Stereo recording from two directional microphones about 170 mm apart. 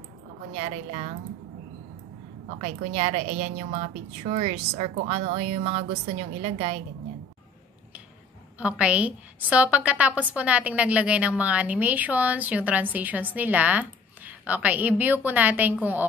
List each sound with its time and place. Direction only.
0.6 s speech: 40° right (ahead or behind)
2.6 s speech: 40° right (ahead or behind)
8.5 s a woman's voice: 5° right (ahead or behind)